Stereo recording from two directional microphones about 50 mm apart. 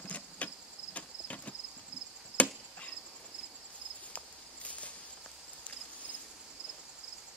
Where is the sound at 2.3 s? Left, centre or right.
Right.